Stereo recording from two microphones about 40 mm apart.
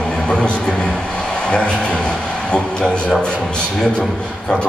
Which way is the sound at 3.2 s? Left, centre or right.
Left.